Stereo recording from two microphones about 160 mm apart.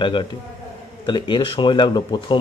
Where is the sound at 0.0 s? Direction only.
30° left (ahead or behind).